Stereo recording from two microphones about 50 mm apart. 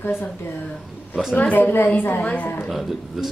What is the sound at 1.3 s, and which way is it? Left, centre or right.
Speech, left.